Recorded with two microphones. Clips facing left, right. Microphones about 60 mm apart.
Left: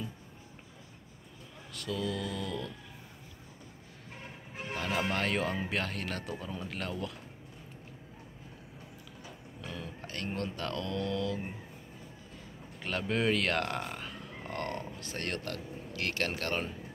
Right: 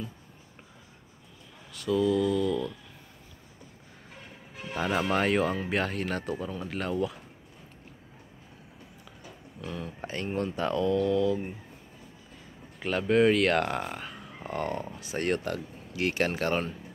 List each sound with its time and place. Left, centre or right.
1.7 s speech: centre
4.7 s speech: centre
5.1 s speech: centre
9.6 s speech: centre
10.0 s speech: centre
12.8 s speech: centre